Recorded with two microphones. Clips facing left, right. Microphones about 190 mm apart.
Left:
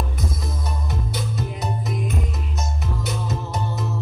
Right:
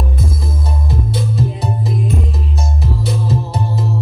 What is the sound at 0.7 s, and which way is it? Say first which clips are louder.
Music: right 8 dB; 30° right (ahead or behind).